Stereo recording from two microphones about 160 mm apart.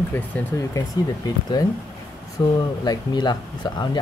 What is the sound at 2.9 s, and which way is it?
Speech, 25° left (ahead or behind).